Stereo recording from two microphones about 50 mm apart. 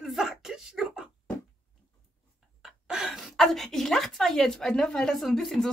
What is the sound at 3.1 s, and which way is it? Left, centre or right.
Speech, centre.